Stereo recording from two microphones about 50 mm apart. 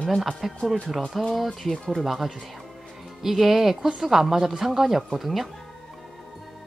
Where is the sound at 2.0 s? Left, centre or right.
Centre.